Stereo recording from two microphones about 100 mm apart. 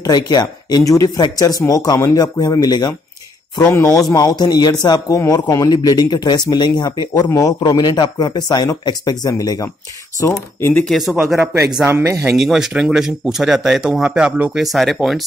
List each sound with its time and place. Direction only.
0.0 s speech: 45° left (ahead or behind)
3.7 s speech: 30° left (ahead or behind)
4.1 s speech: 40° left (ahead or behind)
10.2 s speech: 25° left (ahead or behind)
10.7 s speech: 10° left (ahead or behind)
11.0 s a man's voice: centre (ahead or behind)
11.8 s speech: 25° right (ahead or behind)
12.3 s a man's voice: 5° right (ahead or behind)